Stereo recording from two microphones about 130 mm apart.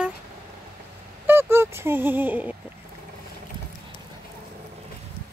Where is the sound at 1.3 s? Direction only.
20° right (ahead or behind).